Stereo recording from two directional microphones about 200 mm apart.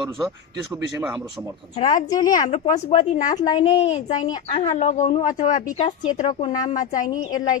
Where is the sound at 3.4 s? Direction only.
20° left (ahead or behind).